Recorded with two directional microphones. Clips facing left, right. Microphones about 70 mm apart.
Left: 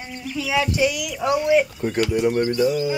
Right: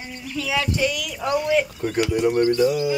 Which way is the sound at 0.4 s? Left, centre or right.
Centre.